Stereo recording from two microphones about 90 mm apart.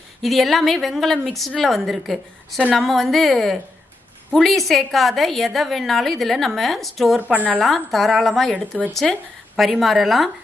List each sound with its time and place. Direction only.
0.2 s a woman's voice: centre (ahead or behind)
7.2 s speech: 15° right (ahead or behind)
7.6 s a woman's voice: centre (ahead or behind)